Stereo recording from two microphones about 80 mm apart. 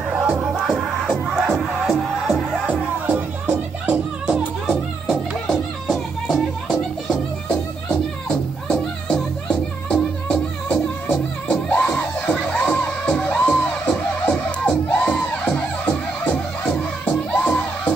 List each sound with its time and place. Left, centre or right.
0.1 s music: centre
0.7 s music: centre
3.1 s music: centre
4.6 s music: centre